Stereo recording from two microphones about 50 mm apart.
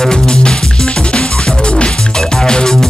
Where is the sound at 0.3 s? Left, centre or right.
Centre.